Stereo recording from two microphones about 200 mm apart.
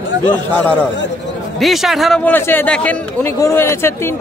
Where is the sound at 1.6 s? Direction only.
Centre (ahead or behind).